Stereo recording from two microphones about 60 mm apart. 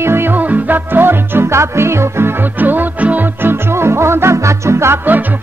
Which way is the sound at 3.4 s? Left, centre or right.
Right.